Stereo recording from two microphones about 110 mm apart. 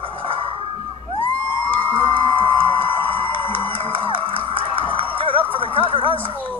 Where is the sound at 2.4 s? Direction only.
50° right (ahead or behind).